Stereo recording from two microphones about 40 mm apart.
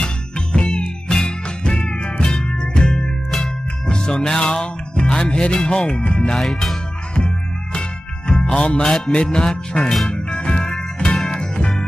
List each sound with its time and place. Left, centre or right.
0.0 s music: left
6.4 s speech: centre
7.2 s music: left
8.8 s music: centre